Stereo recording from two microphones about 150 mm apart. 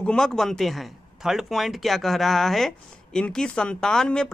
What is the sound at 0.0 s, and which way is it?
A man's voice, 5° left (ahead or behind).